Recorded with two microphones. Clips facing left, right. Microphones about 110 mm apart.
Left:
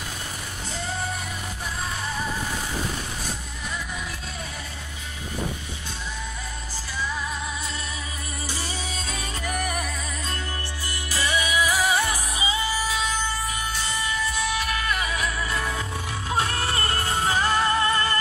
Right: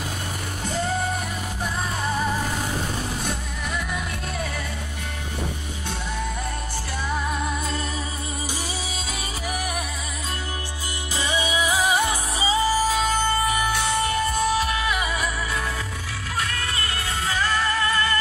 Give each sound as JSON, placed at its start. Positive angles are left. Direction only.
{"t": 3.3, "sound": "music", "side_deg": -60}
{"t": 7.1, "sound": "music", "side_deg": -55}
{"t": 9.1, "sound": "music", "side_deg": -5}
{"t": 11.1, "sound": "music", "side_deg": -20}
{"t": 12.4, "sound": "music", "side_deg": -35}
{"t": 14.8, "sound": "music", "side_deg": -15}
{"t": 16.3, "sound": "music", "side_deg": 30}